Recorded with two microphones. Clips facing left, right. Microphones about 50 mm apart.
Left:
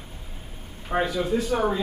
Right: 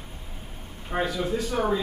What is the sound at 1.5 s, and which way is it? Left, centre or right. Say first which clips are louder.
Speech: even; centre.